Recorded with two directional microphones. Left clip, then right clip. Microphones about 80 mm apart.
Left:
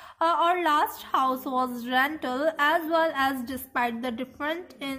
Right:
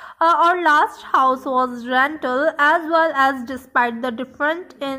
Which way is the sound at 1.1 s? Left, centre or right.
Right.